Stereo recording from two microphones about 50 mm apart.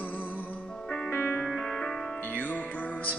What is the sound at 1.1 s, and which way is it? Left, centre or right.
Music, left.